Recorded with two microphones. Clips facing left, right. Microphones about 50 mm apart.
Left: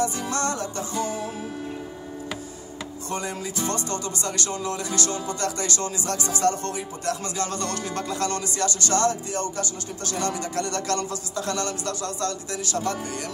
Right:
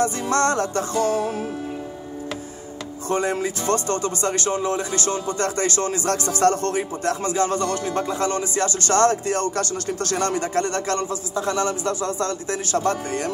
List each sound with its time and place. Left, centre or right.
0.0 s music: right
3.1 s music: right
7.2 s music: right
12.4 s music: right